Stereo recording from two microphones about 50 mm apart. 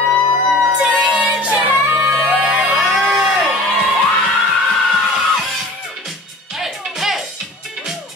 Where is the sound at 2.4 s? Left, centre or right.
Right.